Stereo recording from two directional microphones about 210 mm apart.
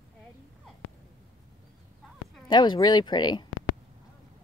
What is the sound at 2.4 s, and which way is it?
Speech, 20° left (ahead or behind).